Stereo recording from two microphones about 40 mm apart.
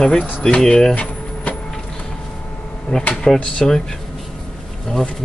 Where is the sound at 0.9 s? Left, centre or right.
Left.